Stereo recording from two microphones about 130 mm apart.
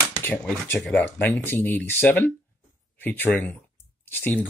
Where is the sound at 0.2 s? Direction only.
10° left (ahead or behind).